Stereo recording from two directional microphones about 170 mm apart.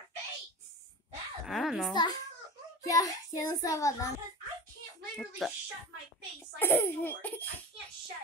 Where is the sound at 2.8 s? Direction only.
20° left (ahead or behind).